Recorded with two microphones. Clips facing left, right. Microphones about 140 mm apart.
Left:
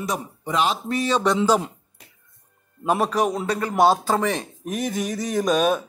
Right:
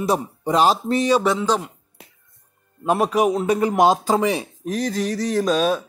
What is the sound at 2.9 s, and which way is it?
A man's voice, 5° right (ahead or behind).